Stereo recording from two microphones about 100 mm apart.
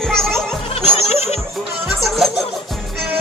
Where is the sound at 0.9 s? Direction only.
90° left.